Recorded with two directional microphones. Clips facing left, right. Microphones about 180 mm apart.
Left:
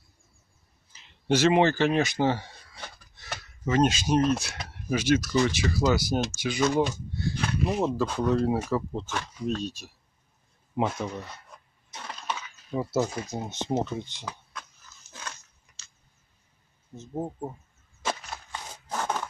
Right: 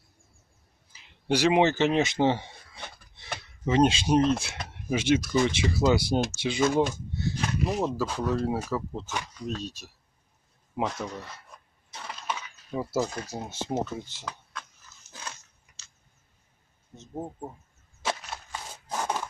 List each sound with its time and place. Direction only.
0.9 s speech: 10° right (ahead or behind)
2.2 s a sound: 25° right (ahead or behind)
4.6 s speech: 25° right (ahead or behind)
6.6 s speech: 5° right (ahead or behind)
12.3 s coin: 5° right (ahead or behind)
13.0 s speech: 10° left (ahead or behind)
13.4 s speech: 5° right (ahead or behind)
16.9 s speech: 5° left (ahead or behind)
18.0 s a sound: 5° right (ahead or behind)